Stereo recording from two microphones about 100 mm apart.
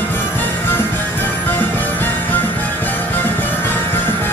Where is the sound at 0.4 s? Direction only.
20° left (ahead or behind).